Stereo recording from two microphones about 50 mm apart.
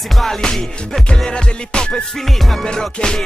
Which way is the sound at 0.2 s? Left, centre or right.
Centre.